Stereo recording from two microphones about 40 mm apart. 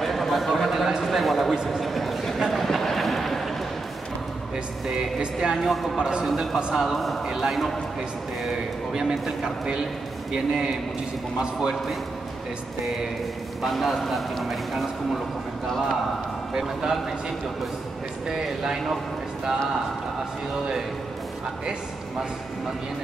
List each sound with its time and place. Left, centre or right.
0.0 s a sound: centre
4.8 s speech: right
5.6 s a man's voice: centre
5.9 s a man's voice: right
6.9 s a man's voice: centre
7.2 s a man's voice: centre
9.0 s a man's voice: centre
13.7 s a man's voice: centre
15.6 s a man's voice: centre
18.3 s a man's voice: centre